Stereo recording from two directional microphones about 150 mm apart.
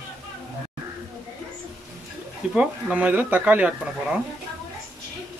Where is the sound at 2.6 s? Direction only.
10° right (ahead or behind).